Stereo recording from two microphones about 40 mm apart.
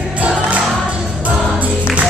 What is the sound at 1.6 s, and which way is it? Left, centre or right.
Music, right.